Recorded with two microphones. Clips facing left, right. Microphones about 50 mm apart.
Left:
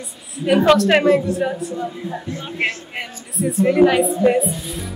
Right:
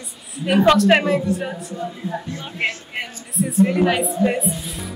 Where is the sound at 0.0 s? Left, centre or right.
Centre.